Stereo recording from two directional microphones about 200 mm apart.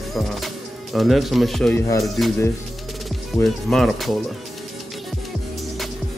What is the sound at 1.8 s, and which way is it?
Speech, 15° left (ahead or behind).